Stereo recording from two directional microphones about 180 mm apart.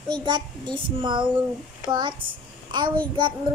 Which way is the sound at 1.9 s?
25° right (ahead or behind).